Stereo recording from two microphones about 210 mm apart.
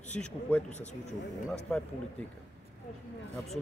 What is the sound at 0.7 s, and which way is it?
Speech, 35° left (ahead or behind).